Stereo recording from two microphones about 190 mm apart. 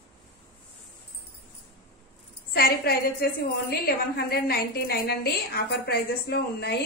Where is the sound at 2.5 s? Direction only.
55° left (ahead or behind).